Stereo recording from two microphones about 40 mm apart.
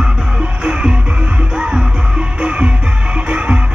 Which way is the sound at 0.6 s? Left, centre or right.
Right.